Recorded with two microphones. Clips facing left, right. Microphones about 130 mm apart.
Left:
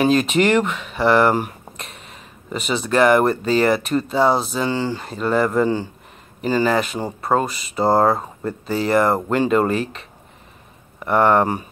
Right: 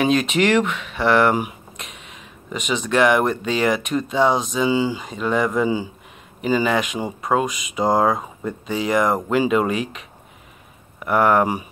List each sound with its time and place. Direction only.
0.0 s speech: centre (ahead or behind)
2.5 s speech: 35° left (ahead or behind)
2.8 s speech: centre (ahead or behind)